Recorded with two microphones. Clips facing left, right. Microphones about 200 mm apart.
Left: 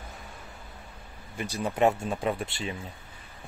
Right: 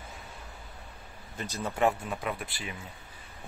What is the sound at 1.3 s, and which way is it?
Speech, 15° left (ahead or behind).